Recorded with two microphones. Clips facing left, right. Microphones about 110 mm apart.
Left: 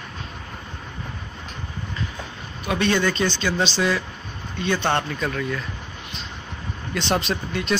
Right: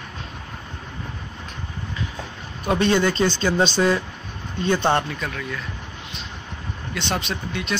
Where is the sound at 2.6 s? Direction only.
30° right (ahead or behind).